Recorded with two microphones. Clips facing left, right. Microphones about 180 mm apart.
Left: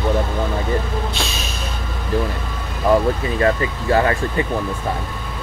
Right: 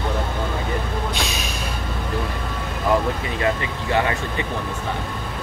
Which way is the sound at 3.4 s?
35° left (ahead or behind).